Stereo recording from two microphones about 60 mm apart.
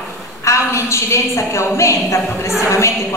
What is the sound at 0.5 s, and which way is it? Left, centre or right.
A woman's voice, left.